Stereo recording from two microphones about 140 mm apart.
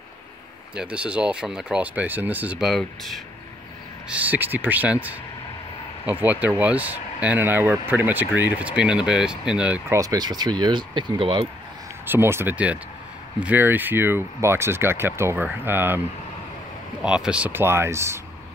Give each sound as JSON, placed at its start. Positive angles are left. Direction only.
{"t": 0.7, "sound": "speech", "side_deg": -10}
{"t": 2.7, "sound": "speech", "side_deg": 0}
{"t": 4.1, "sound": "speech", "side_deg": -10}
{"t": 9.9, "sound": "speech", "side_deg": -25}
{"t": 12.1, "sound": "speech", "side_deg": -15}
{"t": 17.0, "sound": "speech", "side_deg": -5}